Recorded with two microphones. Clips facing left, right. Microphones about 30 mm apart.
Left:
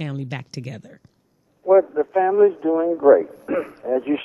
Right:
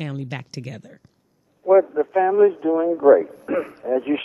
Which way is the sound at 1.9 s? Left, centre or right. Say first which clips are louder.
Even; centre.